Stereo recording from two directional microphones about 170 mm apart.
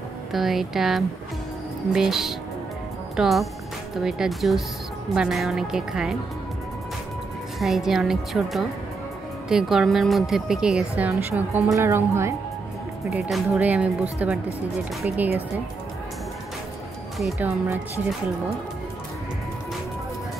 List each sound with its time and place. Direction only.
0.3 s speech: centre (ahead or behind)
7.5 s speech: centre (ahead or behind)
13.1 s speech: 5° right (ahead or behind)
17.2 s speech: 5° right (ahead or behind)